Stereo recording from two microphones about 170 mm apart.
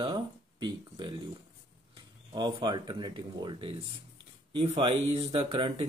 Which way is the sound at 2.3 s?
25° right (ahead or behind).